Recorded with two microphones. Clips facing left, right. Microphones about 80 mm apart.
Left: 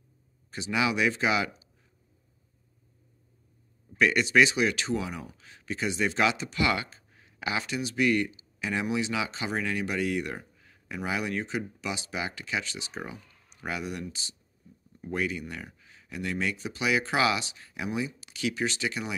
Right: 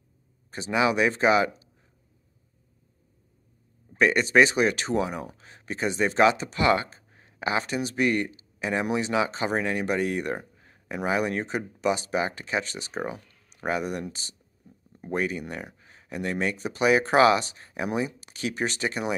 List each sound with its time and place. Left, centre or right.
0.5 s speech: right
3.9 s speech: right